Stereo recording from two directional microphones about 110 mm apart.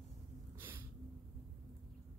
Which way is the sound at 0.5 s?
20° right (ahead or behind).